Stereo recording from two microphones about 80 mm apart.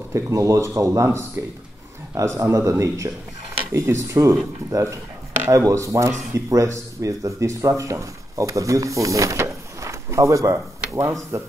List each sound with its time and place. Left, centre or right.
0.1 s speech: right